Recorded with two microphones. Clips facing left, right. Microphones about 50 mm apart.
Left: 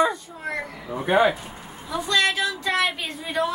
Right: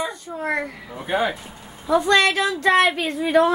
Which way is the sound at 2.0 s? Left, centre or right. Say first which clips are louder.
Right 1 dB; right.